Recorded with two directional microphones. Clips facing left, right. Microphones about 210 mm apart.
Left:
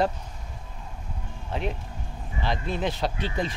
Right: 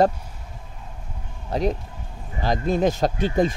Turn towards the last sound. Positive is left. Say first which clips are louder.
# right 8 dB
turn(degrees=-45)  # may be behind; listen again after turning